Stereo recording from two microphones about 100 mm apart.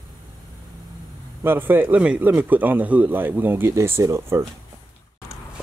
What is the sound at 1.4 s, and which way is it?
Speech, 20° right (ahead or behind).